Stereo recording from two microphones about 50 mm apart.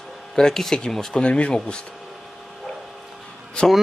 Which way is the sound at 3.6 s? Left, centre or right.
Left.